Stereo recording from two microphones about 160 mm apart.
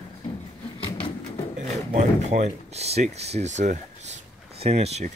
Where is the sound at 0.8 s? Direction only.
20° left (ahead or behind).